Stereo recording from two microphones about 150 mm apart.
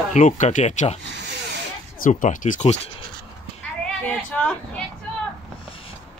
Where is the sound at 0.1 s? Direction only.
55° left (ahead or behind).